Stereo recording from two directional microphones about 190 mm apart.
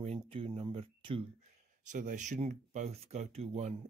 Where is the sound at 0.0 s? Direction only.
30° right (ahead or behind).